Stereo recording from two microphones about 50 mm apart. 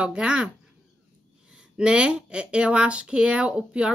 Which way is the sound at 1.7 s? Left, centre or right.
Right.